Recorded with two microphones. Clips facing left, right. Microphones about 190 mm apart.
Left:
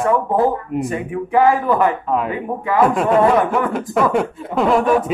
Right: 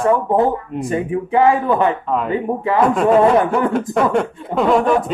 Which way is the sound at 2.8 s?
5° left (ahead or behind).